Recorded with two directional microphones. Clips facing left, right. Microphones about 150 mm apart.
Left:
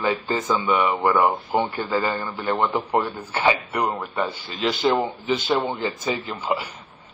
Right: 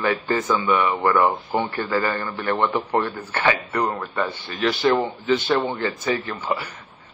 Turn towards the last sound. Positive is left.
turn(degrees=15)  # may be behind; listen again after turning